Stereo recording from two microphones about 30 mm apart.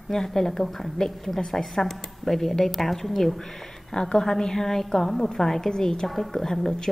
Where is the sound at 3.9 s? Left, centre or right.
Left.